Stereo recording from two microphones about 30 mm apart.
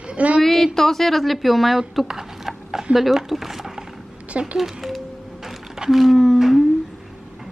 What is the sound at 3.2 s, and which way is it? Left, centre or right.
Speech, centre.